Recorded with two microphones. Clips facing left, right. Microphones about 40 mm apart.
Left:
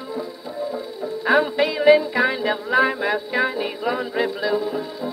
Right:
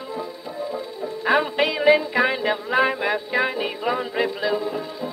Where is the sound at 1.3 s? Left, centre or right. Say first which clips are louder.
Left 1 dB; right.